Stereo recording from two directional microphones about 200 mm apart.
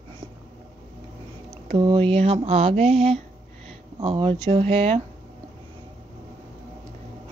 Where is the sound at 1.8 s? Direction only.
25° right (ahead or behind).